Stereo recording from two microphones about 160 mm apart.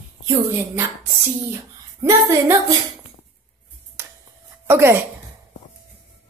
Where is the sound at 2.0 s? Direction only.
20° right (ahead or behind).